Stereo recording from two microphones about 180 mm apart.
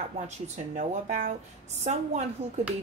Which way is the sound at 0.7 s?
40° right (ahead or behind).